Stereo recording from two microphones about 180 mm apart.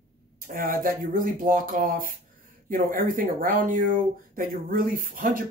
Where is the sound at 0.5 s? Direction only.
50° right (ahead or behind).